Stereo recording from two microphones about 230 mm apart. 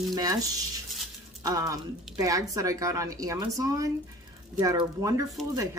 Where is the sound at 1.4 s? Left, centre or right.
Centre.